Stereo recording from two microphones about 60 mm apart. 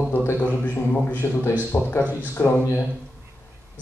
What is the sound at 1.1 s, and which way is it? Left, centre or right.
A man's voice, left.